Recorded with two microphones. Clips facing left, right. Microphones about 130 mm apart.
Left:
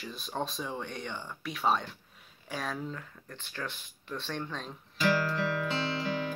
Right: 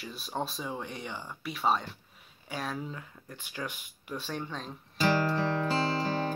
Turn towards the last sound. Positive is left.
turn(degrees=-35)  # may be behind; listen again after turning